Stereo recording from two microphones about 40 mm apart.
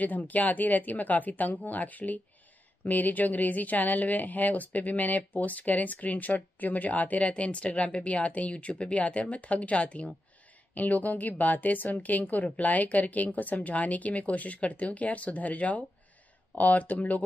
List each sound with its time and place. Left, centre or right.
0.0 s speech: left